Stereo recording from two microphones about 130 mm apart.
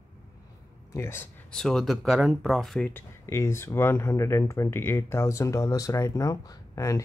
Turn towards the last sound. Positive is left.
turn(degrees=25)  # may be behind; listen again after turning